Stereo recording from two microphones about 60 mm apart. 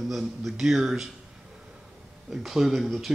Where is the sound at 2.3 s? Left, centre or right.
Centre.